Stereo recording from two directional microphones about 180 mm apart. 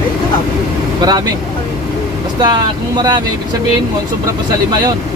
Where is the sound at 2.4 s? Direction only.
25° right (ahead or behind).